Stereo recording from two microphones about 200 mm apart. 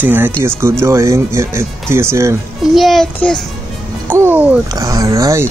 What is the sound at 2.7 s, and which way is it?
Speech, centre (ahead or behind).